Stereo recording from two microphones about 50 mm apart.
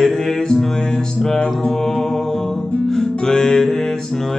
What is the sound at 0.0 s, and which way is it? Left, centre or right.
Music, centre.